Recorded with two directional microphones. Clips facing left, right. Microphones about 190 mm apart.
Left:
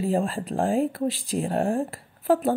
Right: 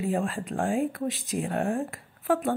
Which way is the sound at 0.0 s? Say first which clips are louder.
Left 3 dB; 35° left (ahead or behind).